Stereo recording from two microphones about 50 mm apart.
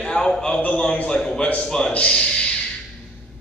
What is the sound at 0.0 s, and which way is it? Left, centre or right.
A man's voice, centre.